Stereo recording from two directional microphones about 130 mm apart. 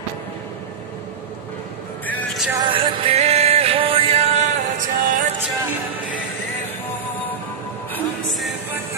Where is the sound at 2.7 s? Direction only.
45° right (ahead or behind).